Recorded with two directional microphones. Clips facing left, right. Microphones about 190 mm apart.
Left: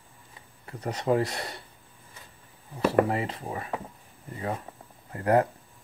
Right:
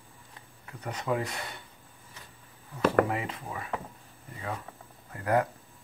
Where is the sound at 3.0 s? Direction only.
35° left (ahead or behind).